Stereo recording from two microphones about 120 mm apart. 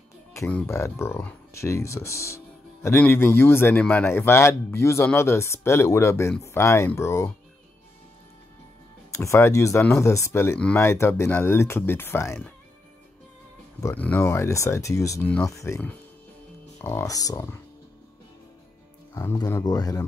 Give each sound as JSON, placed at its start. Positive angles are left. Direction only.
{"t": 0.7, "sound": "speech", "side_deg": 25}
{"t": 9.1, "sound": "speech", "side_deg": 25}
{"t": 13.9, "sound": "speech", "side_deg": 15}
{"t": 16.8, "sound": "speech", "side_deg": 25}
{"t": 19.6, "sound": "speech", "side_deg": 30}